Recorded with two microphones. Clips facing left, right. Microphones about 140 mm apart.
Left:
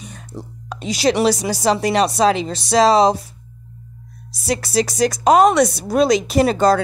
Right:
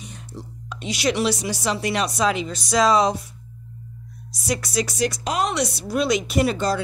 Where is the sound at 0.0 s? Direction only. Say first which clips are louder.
Left 4 dB; 50° left (ahead or behind).